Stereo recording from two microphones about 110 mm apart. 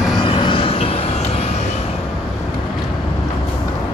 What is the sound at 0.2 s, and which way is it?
Music, 50° left (ahead or behind).